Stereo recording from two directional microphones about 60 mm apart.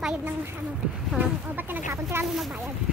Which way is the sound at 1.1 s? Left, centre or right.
Right.